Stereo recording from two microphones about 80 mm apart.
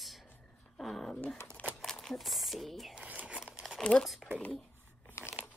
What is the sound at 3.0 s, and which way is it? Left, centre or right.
Crumpling, centre.